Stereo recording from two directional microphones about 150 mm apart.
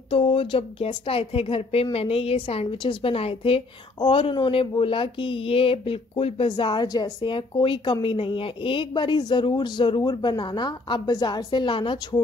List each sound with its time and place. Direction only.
0.1 s a woman's voice: 40° left (ahead or behind)